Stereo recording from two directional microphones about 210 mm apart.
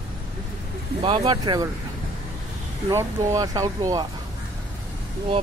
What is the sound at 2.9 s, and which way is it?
Speech, 15° right (ahead or behind).